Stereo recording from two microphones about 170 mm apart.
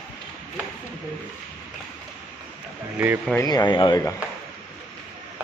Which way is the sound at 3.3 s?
20° left (ahead or behind).